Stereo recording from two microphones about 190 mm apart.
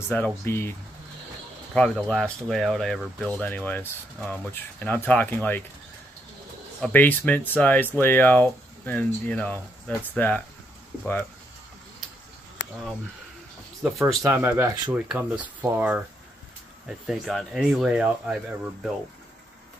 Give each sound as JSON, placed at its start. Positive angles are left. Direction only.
{"t": 0.1, "sound": "speech", "side_deg": 10}
{"t": 6.8, "sound": "speech", "side_deg": 10}
{"t": 13.8, "sound": "speech", "side_deg": -5}
{"t": 14.2, "sound": "speech", "side_deg": -15}